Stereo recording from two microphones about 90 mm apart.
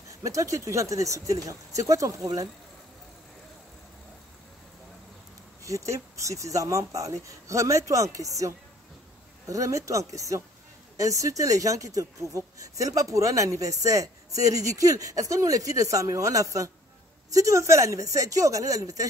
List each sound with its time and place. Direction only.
0.1 s a woman's voice: 35° right (ahead or behind)
5.6 s a woman's voice: 35° right (ahead or behind)